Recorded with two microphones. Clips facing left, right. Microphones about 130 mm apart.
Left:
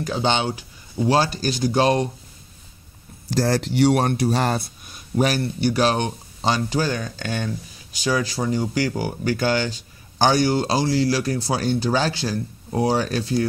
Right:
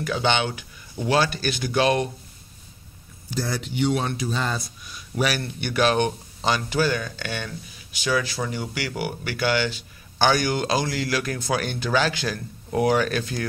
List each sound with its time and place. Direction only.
0.0 s speech: 35° left (ahead or behind)
3.3 s speech: 90° left; by 13.5 s 30° left (ahead or behind)